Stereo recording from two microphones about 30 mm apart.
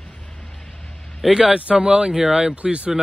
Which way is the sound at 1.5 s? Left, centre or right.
Right.